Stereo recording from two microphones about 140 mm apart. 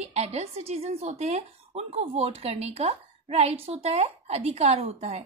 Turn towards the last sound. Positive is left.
turn(degrees=-45)  # may be behind; listen again after turning